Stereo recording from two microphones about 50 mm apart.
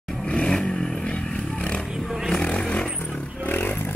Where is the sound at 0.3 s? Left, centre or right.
Centre.